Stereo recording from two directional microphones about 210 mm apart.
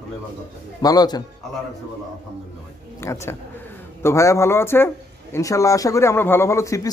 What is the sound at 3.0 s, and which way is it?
Speech, 15° left (ahead or behind).